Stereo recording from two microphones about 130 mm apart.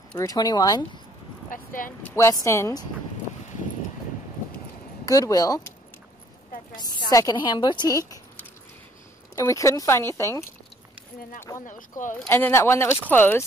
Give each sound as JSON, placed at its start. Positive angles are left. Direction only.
{"t": 0.2, "sound": "speech", "side_deg": 30}
{"t": 1.5, "sound": "speech", "side_deg": 90}
{"t": 1.9, "sound": "speech", "side_deg": 20}
{"t": 5.0, "sound": "speech", "side_deg": 30}
{"t": 6.8, "sound": "a woman's voice", "side_deg": 30}
{"t": 9.3, "sound": "speech", "side_deg": 25}
{"t": 12.1, "sound": "speech", "side_deg": 15}